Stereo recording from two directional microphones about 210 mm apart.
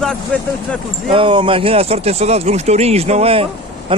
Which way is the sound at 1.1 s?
25° right (ahead or behind).